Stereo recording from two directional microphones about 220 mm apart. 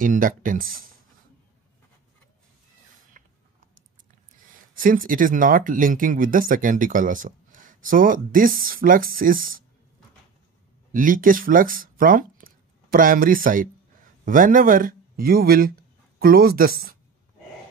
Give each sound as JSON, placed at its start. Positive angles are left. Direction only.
{"t": 0.0, "sound": "speech", "side_deg": -40}
{"t": 4.7, "sound": "speech", "side_deg": -40}
{"t": 10.9, "sound": "speech", "side_deg": -40}